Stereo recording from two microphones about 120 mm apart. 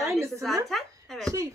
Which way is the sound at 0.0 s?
20° right (ahead or behind).